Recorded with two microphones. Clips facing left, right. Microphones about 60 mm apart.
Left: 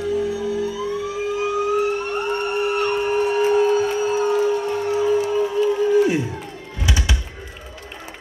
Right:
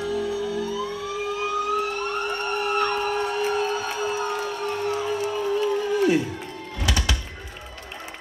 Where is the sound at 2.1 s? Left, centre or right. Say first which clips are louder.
Left 4 dB; left.